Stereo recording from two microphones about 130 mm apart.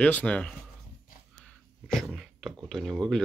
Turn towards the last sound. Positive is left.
turn(degrees=0)  # may be behind; listen again after turning